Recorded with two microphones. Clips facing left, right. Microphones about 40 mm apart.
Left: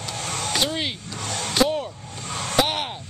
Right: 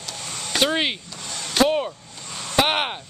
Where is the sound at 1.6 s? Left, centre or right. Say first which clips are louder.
Right 4 dB; right.